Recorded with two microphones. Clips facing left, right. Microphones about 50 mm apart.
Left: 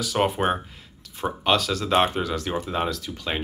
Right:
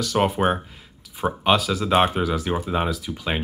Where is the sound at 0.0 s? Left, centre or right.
Centre.